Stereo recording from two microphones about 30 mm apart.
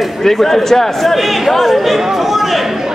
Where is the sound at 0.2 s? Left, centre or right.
Centre.